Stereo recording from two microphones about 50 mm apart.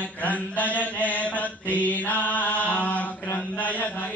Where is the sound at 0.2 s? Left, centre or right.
Left.